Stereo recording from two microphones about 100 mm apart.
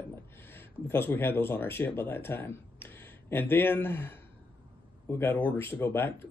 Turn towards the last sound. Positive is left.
turn(degrees=25)  # may be behind; listen again after turning